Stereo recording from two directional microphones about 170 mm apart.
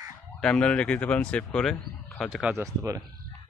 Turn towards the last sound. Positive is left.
turn(degrees=-20)  # may be behind; listen again after turning